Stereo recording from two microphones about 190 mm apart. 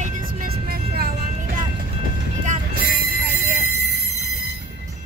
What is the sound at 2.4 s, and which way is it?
Vehicle, 50° right (ahead or behind).